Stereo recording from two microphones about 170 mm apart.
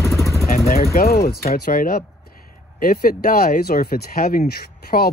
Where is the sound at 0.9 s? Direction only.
65° left (ahead or behind).